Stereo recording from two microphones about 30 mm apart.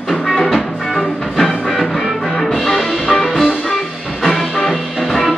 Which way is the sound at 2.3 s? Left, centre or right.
Centre.